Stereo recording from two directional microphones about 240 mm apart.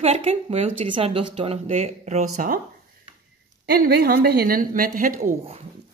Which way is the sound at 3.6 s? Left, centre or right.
Right.